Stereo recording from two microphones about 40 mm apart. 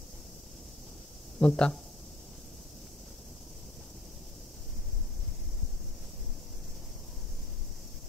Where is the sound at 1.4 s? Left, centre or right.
Left.